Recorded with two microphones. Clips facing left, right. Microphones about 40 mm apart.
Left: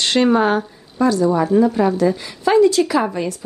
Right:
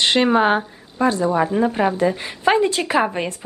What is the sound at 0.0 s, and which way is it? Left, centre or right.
A woman's voice, right.